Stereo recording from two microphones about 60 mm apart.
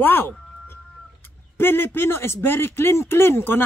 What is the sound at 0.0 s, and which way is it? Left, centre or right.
A man's voice, left.